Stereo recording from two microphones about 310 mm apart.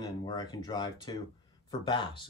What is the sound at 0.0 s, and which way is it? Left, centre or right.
A man's voice, centre.